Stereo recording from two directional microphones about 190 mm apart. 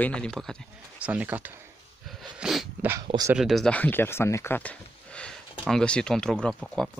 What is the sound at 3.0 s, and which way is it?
Speech, 20° right (ahead or behind).